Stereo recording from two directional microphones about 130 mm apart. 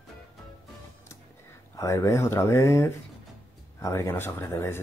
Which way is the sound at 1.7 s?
25° left (ahead or behind).